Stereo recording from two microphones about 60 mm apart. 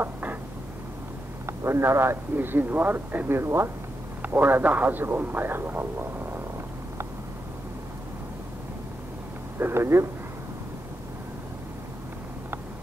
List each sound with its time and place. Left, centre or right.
0.0 s a sound: right
1.4 s speech: right
2.3 s a man's voice: right
4.2 s a man's voice: right
9.6 s speech: right